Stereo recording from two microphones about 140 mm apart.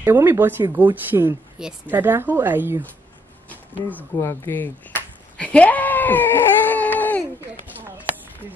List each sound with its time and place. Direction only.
0.0 s a woman's voice: 15° right (ahead or behind)
1.6 s a woman's voice: 10° right (ahead or behind)
3.9 s speech: 15° left (ahead or behind)